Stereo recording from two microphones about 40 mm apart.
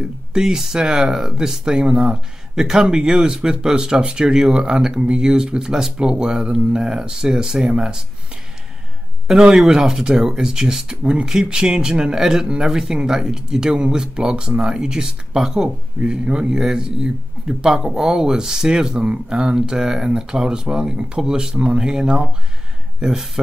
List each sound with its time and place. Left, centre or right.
0.3 s speech: centre
9.5 s speech: centre